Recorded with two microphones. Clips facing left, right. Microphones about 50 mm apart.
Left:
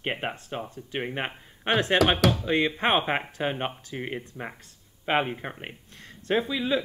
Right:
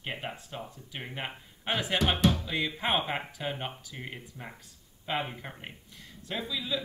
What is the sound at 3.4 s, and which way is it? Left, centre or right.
Speech, left.